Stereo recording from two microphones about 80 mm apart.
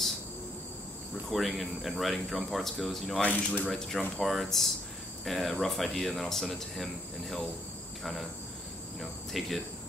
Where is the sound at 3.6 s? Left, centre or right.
Centre.